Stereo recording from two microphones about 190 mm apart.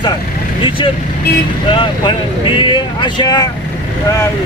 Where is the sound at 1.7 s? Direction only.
25° left (ahead or behind).